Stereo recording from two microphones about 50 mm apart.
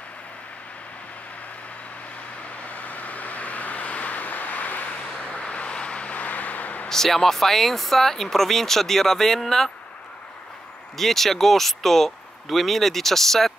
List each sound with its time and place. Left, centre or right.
2.6 s vehicle: left
6.9 s speech: centre
11.0 s speech: centre